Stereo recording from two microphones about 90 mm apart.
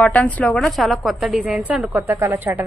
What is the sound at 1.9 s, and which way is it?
Speech, 30° right (ahead or behind).